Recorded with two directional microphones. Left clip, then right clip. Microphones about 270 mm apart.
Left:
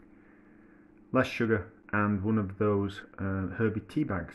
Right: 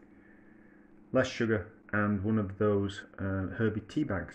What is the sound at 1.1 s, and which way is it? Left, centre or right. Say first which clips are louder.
Speech: left 1 dB; centre.